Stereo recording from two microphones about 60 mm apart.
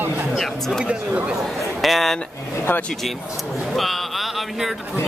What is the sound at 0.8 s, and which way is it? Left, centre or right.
Speech, centre.